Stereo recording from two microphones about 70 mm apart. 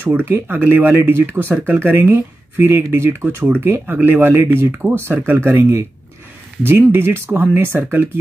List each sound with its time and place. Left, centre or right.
0.0 s speech: right
5.5 s speech: right